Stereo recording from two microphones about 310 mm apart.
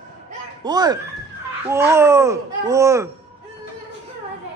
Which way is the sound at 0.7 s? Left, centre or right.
Centre.